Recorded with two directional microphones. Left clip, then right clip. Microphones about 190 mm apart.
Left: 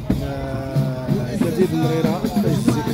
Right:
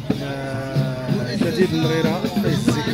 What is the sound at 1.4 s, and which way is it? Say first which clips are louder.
Speech: even; 60° left (ahead or behind).